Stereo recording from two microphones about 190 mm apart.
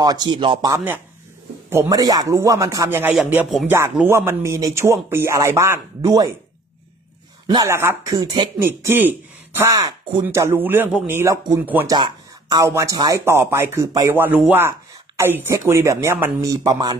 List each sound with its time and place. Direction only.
0.0 s speech: 20° right (ahead or behind)
0.7 s speech: 10° right (ahead or behind)
7.4 s speech: 15° right (ahead or behind)
8.5 s speech: 10° right (ahead or behind)